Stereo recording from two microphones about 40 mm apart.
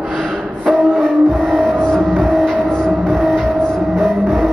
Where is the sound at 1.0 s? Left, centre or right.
Left.